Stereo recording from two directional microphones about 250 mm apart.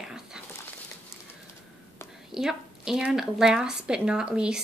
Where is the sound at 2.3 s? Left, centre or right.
Centre.